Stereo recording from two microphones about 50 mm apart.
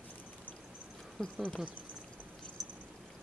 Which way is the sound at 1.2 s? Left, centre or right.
Centre.